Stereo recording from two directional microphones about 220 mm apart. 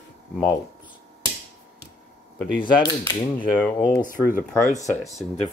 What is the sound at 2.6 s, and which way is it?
Speech, 20° left (ahead or behind).